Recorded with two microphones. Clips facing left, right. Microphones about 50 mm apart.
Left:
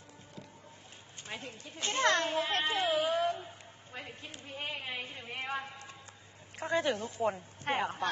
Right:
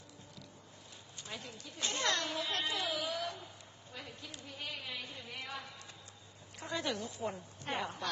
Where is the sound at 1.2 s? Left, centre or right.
Left.